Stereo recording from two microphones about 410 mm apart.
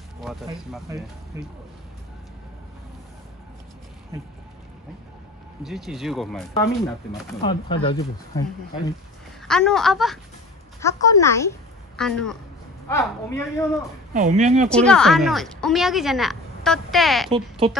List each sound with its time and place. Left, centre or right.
0.2 s speech: centre
5.6 s speech: centre
7.4 s speech: centre
14.1 s speech: centre
14.7 s speech: centre
17.3 s speech: centre